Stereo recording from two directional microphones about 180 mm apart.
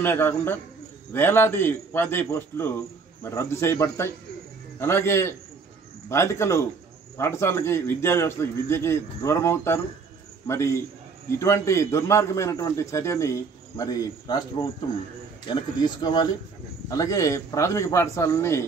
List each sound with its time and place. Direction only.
0.0 s a man's voice: 10° left (ahead or behind)